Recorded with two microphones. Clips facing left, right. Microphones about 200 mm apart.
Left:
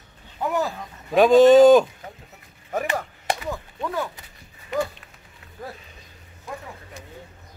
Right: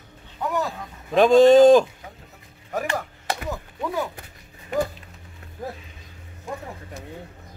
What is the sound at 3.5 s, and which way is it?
Chopping, 10° right (ahead or behind).